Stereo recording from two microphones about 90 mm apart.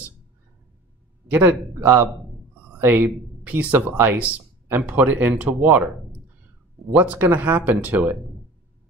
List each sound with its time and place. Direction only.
1.3 s speech: 20° right (ahead or behind)